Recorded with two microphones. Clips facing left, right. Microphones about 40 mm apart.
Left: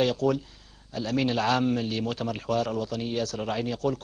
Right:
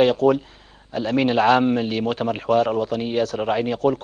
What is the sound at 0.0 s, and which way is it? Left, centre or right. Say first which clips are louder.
A man's voice: right 8 dB; right.